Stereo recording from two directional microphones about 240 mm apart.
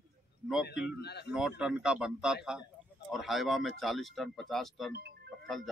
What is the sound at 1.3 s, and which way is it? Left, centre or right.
Speech, centre.